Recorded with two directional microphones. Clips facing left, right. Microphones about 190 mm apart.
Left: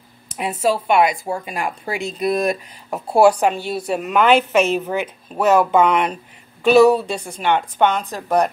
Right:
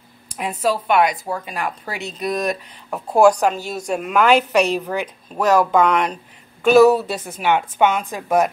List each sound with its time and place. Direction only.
0.4 s speech: 5° left (ahead or behind)
3.5 s speech: 40° right (ahead or behind)
3.8 s a woman's voice: centre (ahead or behind)